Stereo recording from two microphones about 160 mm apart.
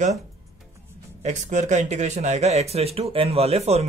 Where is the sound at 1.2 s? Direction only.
50° right (ahead or behind).